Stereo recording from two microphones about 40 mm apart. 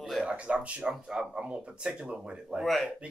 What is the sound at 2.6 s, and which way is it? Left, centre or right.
Speech, centre.